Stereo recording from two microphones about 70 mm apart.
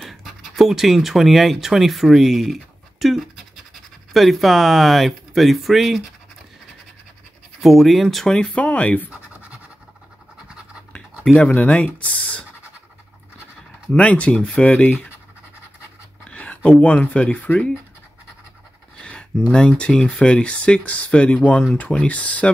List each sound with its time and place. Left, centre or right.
0.0 s speech: centre
7.6 s speech: centre
8.3 s speech: centre
9.1 s scratch: right
11.3 s speech: centre
13.9 s speech: centre
16.3 s a sound: centre
16.8 s speech: centre
18.9 s a sound: centre
19.4 s speech: centre